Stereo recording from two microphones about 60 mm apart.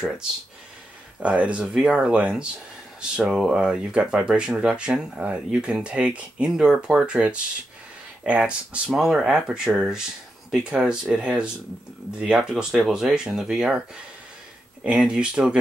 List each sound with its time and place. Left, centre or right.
1.2 s speech: right
8.9 s speech: centre